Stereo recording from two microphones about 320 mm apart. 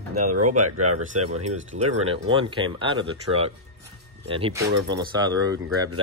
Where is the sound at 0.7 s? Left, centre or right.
Right.